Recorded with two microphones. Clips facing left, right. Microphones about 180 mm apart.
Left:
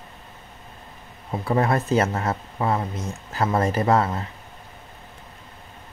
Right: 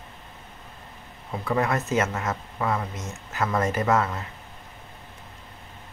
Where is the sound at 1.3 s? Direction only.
30° left (ahead or behind).